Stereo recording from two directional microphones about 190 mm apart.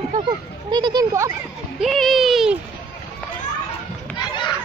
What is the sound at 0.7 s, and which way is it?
Speech, 20° right (ahead or behind).